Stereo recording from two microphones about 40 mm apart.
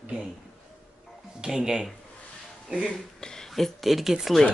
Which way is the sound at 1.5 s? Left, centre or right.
Centre.